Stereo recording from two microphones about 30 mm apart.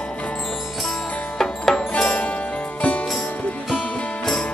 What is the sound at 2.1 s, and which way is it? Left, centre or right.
Music, left.